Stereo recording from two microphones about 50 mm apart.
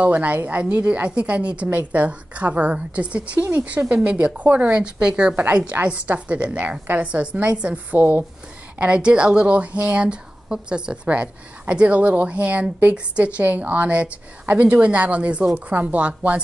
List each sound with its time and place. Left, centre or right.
0.0 s a woman's voice: right
8.0 s speech: right
8.7 s a woman's voice: right
13.4 s a woman's voice: right